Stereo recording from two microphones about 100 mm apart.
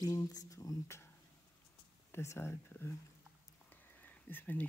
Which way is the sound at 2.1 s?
25° left (ahead or behind).